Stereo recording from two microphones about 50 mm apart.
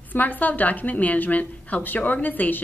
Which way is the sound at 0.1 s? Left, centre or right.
Left.